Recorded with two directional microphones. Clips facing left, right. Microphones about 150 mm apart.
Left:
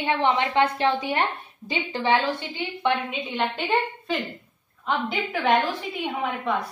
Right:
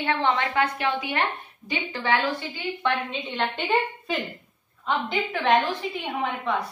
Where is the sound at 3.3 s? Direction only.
Centre (ahead or behind).